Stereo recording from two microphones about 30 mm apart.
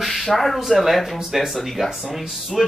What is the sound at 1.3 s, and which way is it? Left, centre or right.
Speech, centre.